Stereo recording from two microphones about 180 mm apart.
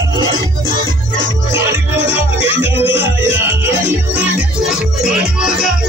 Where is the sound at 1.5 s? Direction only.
10° right (ahead or behind).